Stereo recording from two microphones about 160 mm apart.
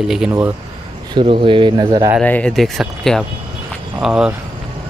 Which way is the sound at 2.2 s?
10° left (ahead or behind).